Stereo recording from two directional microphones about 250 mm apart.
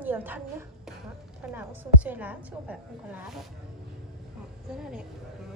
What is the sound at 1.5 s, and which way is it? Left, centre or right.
A woman's voice, centre.